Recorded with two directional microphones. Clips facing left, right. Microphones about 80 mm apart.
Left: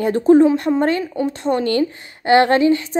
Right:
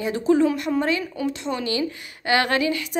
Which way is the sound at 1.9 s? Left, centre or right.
Left.